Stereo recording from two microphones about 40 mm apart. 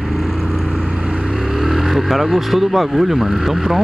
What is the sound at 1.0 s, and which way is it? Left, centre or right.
Vehicle, right.